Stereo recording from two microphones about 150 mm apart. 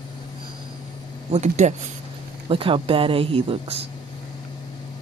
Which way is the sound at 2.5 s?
35° right (ahead or behind).